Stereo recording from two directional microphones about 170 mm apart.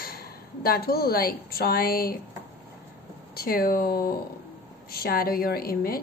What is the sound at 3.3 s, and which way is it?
A woman's voice, 60° left (ahead or behind).